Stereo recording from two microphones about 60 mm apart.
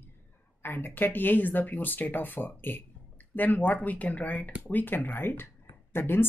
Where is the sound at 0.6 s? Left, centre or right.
Left.